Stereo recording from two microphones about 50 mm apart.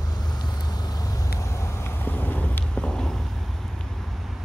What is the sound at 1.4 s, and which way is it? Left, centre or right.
Vehicle, left.